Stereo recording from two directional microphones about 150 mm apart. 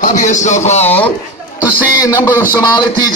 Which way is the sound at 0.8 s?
10° left (ahead or behind).